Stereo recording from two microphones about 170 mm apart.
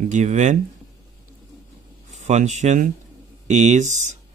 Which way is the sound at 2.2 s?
45° right (ahead or behind).